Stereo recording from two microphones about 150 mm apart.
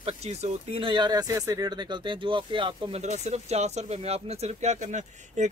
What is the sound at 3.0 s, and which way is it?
Speech, 50° right (ahead or behind).